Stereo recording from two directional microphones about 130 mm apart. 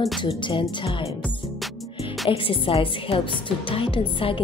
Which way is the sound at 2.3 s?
45° left (ahead or behind).